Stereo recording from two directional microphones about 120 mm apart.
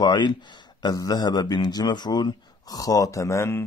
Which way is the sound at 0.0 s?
40° left (ahead or behind).